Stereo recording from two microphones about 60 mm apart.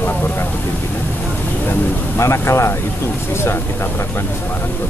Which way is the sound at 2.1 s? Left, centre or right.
Left.